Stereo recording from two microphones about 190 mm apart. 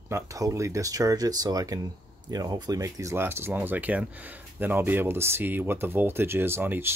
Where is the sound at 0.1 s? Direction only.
15° right (ahead or behind).